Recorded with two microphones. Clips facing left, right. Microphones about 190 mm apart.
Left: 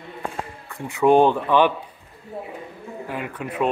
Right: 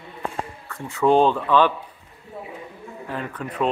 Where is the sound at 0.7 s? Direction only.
15° left (ahead or behind).